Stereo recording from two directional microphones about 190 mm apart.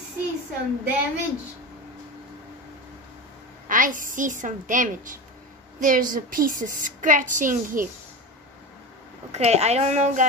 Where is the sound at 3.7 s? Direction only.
45° right (ahead or behind).